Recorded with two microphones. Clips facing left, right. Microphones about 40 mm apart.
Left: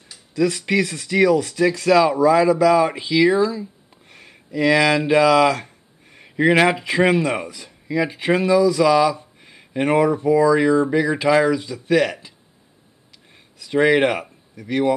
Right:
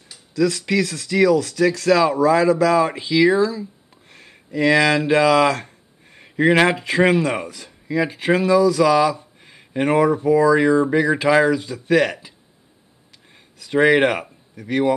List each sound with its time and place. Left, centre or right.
0.3 s speech: left
1.9 s speech: centre
4.3 s speech: centre